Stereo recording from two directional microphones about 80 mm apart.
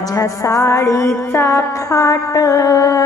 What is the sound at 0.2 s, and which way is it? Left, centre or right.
Music, left.